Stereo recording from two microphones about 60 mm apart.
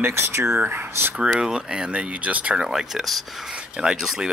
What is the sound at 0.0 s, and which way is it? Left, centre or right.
Speech, right.